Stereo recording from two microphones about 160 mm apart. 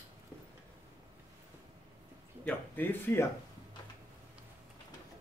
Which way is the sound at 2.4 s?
10° left (ahead or behind).